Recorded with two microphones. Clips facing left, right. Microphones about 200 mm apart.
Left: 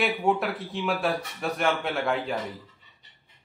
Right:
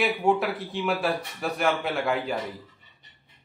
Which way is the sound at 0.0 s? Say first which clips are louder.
Right 1 dB; centre (ahead or behind).